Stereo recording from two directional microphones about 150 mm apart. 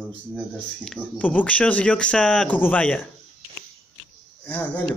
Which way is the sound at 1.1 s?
10° left (ahead or behind).